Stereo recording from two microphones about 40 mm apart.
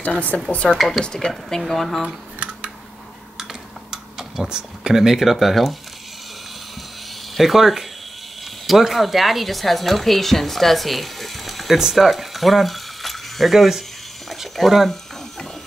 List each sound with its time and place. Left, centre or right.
0.0 s speech: left
0.7 s speech: centre
1.0 s speech: centre
1.6 s speech: centre
3.9 s tick-tock: centre
4.6 s speech: centre
7.3 s speech: centre
14.3 s a sound: centre